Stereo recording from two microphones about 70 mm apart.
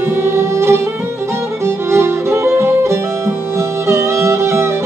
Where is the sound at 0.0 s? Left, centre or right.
Right.